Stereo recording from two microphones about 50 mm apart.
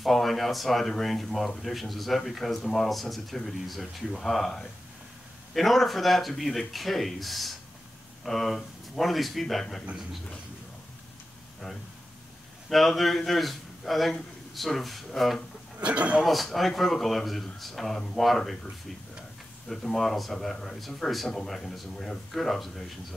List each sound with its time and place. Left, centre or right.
0.0 s speech: centre
12.6 s speech: centre
15.8 s a man's voice: right
16.3 s speech: centre
19.7 s speech: centre